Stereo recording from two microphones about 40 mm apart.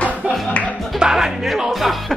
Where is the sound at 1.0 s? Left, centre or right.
Centre.